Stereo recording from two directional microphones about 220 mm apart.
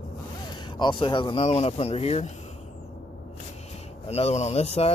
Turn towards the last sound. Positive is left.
turn(degrees=30)  # may be behind; listen again after turning